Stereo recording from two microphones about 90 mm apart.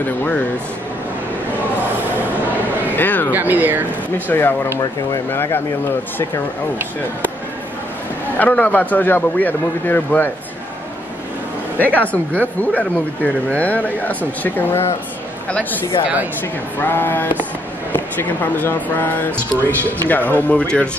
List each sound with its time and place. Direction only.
0.0 s a man's voice: 20° left (ahead or behind)
3.0 s a man's voice: 20° left (ahead or behind)
3.3 s speech: 20° right (ahead or behind)
4.3 s a man's voice: 25° left (ahead or behind)
8.4 s a man's voice: 15° left (ahead or behind)
11.8 s speech: 15° left (ahead or behind)
16.8 s a man's voice: 20° left (ahead or behind)